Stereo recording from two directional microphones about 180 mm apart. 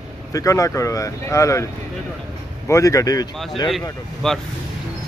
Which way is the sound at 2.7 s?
15° left (ahead or behind).